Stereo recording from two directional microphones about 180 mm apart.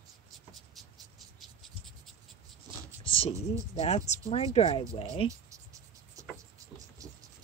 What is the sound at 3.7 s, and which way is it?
Speech, 35° left (ahead or behind).